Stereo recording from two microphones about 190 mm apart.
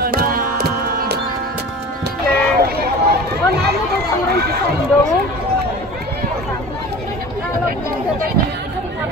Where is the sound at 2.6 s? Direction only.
55° right (ahead or behind).